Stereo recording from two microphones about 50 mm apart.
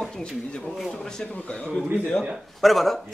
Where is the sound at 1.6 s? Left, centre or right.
Centre.